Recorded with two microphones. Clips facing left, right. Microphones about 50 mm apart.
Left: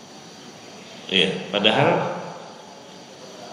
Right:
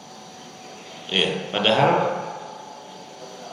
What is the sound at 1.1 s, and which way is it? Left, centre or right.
Speech, centre.